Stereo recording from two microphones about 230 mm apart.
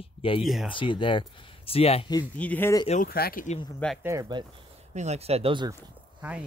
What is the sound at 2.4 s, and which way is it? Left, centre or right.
Speech, centre.